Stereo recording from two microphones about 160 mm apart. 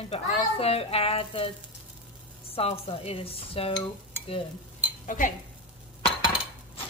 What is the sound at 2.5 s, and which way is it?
A woman's voice, 35° left (ahead or behind).